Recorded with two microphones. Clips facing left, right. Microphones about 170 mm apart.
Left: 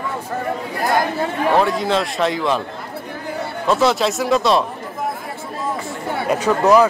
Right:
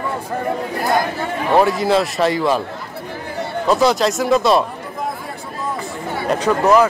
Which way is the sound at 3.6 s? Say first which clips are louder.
Right 1 dB; centre (ahead or behind).